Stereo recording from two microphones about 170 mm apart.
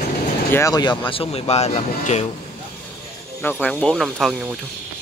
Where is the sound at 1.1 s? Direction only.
35° left (ahead or behind).